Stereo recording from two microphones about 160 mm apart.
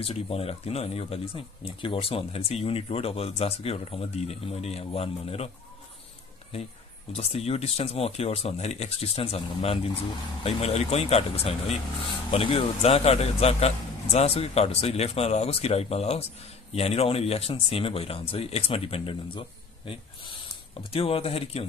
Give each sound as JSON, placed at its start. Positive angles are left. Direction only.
{"t": 0.0, "sound": "speech", "side_deg": 40}
{"t": 7.2, "sound": "speech", "side_deg": 40}